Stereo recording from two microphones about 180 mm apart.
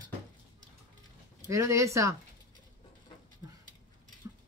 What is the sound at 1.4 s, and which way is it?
Speech, 15° right (ahead or behind).